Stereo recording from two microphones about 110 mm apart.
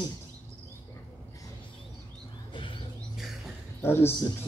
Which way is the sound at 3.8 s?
20° left (ahead or behind).